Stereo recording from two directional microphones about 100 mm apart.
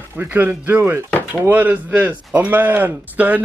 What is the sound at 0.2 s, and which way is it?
Speech, 20° right (ahead or behind).